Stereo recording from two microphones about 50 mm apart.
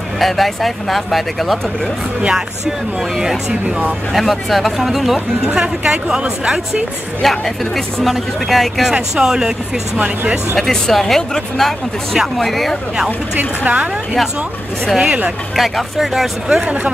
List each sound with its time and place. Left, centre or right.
0.2 s speech: centre
3.2 s a woman's voice: centre
4.1 s speech: centre
5.5 s a woman's voice: centre
7.2 s speech: centre
9.1 s a woman's voice: centre
9.9 s speech: right
10.5 s speech: centre
13.4 s speech: right
15.0 s speech: right
15.5 s speech: centre